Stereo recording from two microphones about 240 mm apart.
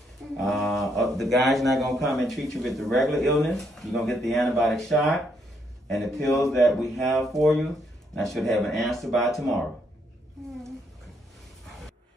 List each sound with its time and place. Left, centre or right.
0.4 s speech: centre